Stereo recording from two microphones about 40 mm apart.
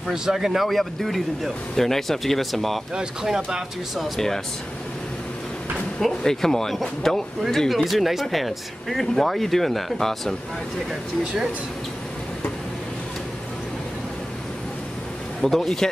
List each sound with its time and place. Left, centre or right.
0.1 s speech: centre
2.9 s speech: centre
5.9 s speech: centre
10.9 s speech: centre
15.4 s speech: centre